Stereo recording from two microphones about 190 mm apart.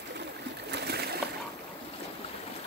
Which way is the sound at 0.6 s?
60° right (ahead or behind).